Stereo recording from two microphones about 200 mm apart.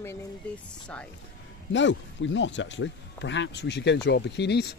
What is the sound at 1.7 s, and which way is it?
Speech, 65° left (ahead or behind).